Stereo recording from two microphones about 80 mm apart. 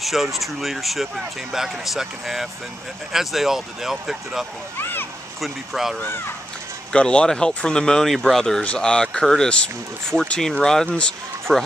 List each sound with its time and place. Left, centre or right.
0.0 s speech: centre
4.7 s a child's voice: left
5.4 s speech: centre
6.9 s speech: centre